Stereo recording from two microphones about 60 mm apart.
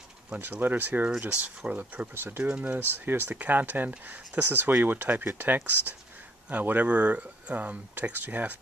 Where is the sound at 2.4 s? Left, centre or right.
Right.